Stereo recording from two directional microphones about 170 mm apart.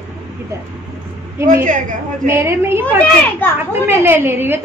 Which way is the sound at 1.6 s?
50° right (ahead or behind).